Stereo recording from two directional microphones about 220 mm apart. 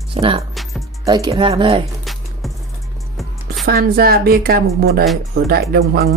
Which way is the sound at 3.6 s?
45° right (ahead or behind).